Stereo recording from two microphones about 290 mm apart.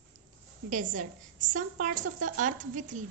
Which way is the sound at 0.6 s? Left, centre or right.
Right.